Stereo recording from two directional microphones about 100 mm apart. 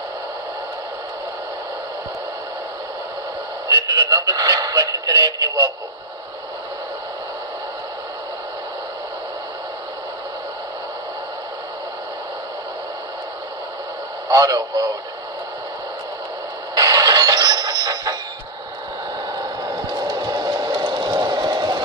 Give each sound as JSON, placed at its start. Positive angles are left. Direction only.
{"t": 3.6, "sound": "speech", "side_deg": -40}
{"t": 14.3, "sound": "speech", "side_deg": -35}
{"t": 16.7, "sound": "train", "side_deg": -40}
{"t": 19.3, "sound": "a sound", "side_deg": -40}